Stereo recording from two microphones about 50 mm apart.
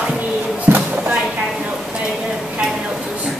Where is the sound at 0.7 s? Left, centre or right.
Right.